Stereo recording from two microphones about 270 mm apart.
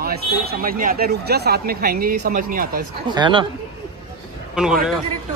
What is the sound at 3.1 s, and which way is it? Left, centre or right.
Speech, centre.